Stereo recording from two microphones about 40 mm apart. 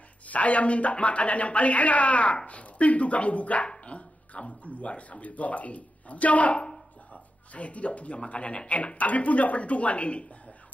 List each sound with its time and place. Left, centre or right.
0.3 s a man's voice: left